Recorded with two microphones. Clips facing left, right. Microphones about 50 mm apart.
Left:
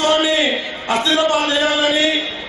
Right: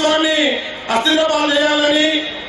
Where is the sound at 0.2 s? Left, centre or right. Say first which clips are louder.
Right 1 dB; centre.